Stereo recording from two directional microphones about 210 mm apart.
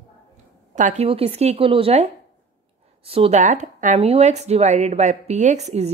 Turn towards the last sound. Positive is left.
turn(degrees=-30)  # may be behind; listen again after turning